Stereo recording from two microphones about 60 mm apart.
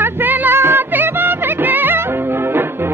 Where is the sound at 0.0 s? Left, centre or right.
Right.